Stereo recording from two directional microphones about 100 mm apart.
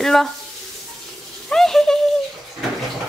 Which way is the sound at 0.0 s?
5° left (ahead or behind).